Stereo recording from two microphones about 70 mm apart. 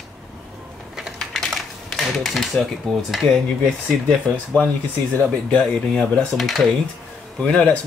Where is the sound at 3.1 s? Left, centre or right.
Centre.